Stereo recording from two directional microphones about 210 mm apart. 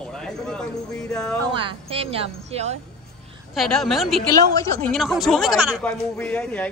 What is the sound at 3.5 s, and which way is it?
Speech, centre (ahead or behind).